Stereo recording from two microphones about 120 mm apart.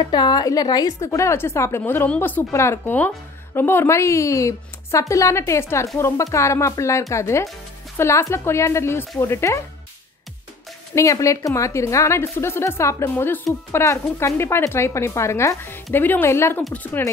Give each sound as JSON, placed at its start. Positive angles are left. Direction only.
{"t": 0.0, "sound": "a woman's voice", "side_deg": 35}
{"t": 11.0, "sound": "a woman's voice", "side_deg": 25}